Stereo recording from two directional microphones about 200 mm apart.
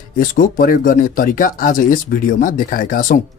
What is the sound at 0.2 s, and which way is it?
Speech, 45° left (ahead or behind).